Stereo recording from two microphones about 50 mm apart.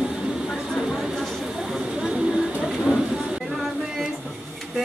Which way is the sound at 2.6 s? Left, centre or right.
Centre.